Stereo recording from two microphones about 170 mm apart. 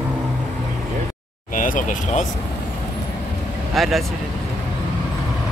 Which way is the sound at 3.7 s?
Centre (ahead or behind).